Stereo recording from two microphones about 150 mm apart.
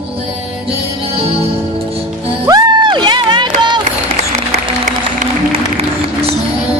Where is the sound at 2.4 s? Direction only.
30° right (ahead or behind).